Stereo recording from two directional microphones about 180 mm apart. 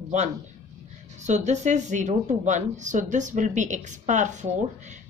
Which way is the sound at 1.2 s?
40° right (ahead or behind).